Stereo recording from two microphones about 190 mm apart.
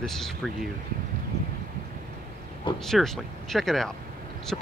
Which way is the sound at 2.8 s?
Centre (ahead or behind).